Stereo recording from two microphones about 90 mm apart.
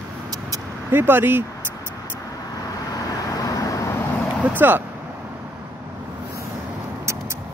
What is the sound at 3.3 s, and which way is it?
Vehicle, 40° left (ahead or behind).